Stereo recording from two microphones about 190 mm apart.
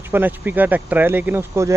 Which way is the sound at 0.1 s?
10° right (ahead or behind).